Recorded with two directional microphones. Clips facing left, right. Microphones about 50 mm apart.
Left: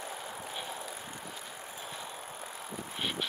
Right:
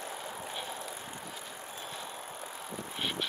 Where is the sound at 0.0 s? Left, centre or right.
Centre.